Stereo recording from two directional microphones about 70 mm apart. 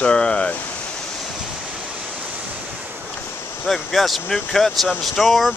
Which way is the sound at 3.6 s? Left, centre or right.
Centre.